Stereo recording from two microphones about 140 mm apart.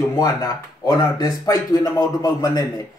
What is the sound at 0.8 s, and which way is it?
Speech, 25° left (ahead or behind).